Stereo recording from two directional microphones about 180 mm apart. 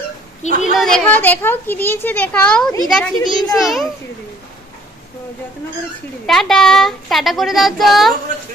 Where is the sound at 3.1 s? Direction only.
20° left (ahead or behind).